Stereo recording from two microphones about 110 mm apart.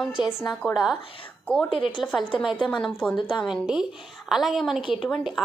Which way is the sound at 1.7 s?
50° left (ahead or behind).